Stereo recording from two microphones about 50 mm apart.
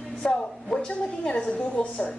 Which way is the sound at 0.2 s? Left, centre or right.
Centre.